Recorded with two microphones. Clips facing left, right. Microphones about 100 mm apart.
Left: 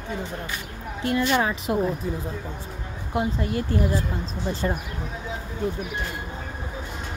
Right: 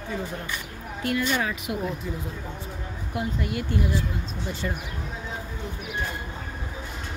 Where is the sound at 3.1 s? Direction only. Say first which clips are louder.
Left 4 dB; 35° left (ahead or behind).